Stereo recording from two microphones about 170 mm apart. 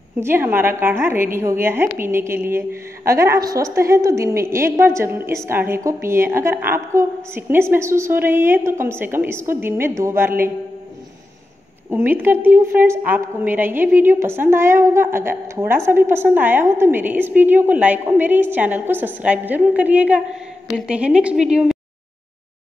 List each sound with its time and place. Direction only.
0.2 s a woman's voice: 15° right (ahead or behind)
11.9 s a woman's voice: 15° right (ahead or behind)